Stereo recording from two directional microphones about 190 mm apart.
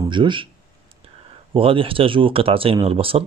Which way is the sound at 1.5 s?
30° right (ahead or behind).